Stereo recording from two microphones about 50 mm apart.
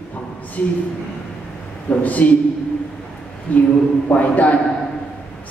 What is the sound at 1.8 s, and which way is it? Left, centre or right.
Speech, left.